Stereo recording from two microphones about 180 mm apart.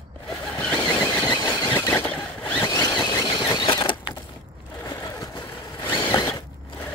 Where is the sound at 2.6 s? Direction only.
25° left (ahead or behind).